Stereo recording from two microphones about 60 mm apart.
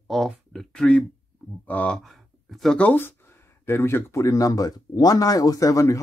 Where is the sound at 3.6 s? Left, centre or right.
Left.